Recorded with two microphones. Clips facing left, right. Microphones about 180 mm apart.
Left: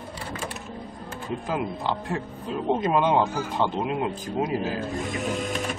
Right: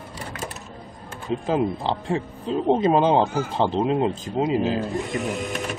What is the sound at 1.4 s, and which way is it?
Speech, 30° right (ahead or behind).